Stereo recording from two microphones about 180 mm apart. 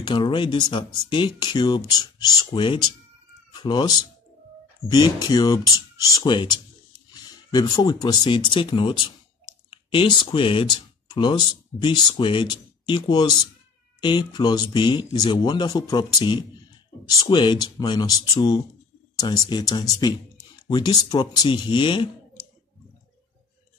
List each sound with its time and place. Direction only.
0.0 s speech: 25° left (ahead or behind)